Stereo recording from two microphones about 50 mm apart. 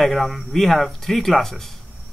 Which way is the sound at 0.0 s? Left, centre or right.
Centre.